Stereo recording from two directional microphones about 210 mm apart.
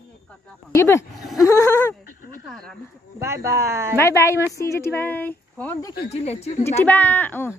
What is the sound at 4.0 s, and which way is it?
Speech, 15° left (ahead or behind).